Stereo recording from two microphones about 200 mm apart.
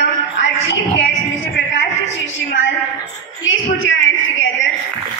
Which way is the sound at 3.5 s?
70° left (ahead or behind).